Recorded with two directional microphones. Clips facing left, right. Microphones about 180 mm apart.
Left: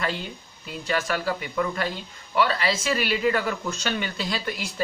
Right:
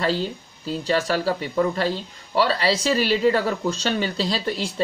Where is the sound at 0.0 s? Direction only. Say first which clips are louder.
Right 6 dB; 30° right (ahead or behind).